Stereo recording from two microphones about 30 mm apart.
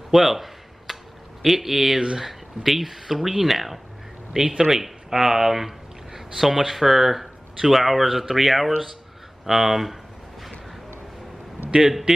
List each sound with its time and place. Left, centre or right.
0.1 s a sound: centre
1.4 s speech: centre
1.8 s speech: right
2.1 s speech: centre